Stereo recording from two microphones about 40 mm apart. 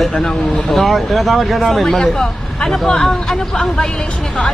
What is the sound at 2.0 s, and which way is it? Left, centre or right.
Speech, centre.